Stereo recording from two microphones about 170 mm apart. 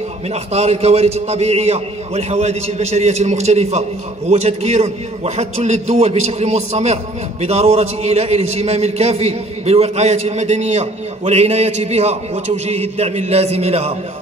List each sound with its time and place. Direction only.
0.3 s a man's voice: 40° right (ahead or behind)